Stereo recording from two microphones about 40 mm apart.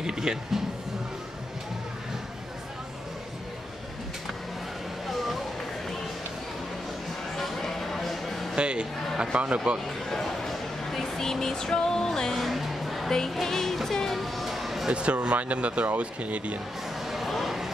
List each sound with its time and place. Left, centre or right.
0.0 s speech: centre
5.0 s music: centre
7.3 s a sound: centre
8.5 s speech: right
9.8 s speech: centre
13.1 s music: centre
14.9 s speech: right
17.0 s a sound: centre